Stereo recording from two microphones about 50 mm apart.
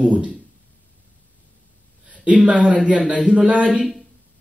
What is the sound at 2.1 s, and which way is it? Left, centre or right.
Speech, right.